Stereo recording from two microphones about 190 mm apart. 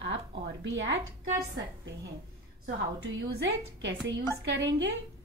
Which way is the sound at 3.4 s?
70° right (ahead or behind).